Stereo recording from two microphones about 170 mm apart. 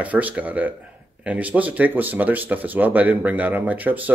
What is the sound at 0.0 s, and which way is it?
Speech, 10° right (ahead or behind).